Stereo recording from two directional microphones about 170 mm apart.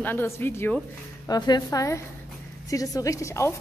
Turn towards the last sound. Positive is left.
turn(degrees=15)  # may be behind; listen again after turning